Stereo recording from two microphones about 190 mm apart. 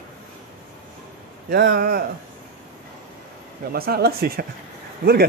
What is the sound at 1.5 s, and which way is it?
Speech, 50° right (ahead or behind).